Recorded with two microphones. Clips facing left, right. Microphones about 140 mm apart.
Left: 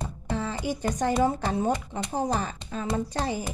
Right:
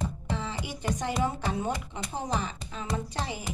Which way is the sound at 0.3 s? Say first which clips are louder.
Left 6 dB; 50° left (ahead or behind).